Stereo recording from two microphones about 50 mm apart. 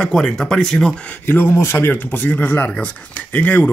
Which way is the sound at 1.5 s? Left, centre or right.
Left.